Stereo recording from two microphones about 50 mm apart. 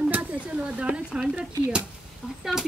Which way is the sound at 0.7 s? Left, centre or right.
Right.